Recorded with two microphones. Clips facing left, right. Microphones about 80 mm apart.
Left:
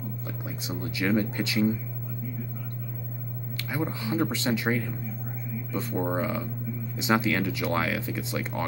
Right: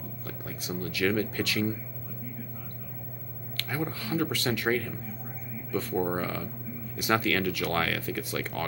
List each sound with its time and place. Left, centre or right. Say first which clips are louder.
0.5 s speech: right 1 dB; centre
3.5 s speech: left 2 dB; centre